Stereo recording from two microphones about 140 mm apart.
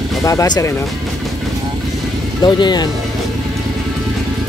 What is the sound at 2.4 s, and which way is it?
Speech, 30° left (ahead or behind).